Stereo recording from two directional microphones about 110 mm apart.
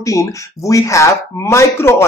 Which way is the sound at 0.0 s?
30° left (ahead or behind).